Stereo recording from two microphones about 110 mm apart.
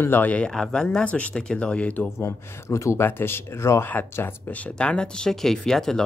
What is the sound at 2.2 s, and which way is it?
Speech, 25° left (ahead or behind).